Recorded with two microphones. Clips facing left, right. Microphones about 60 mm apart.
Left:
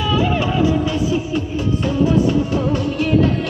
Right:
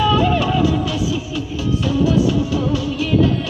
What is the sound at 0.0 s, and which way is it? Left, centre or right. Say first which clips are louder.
Music: right 2 dB; centre.